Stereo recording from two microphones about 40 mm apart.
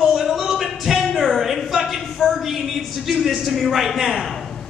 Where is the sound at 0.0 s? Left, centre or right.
Centre.